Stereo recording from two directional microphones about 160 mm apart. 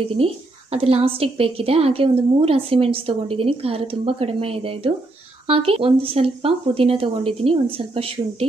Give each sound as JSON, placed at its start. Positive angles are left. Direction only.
{"t": 0.1, "sound": "a woman's voice", "side_deg": -35}